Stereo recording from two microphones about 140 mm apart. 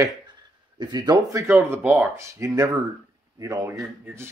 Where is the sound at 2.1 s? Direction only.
20° right (ahead or behind).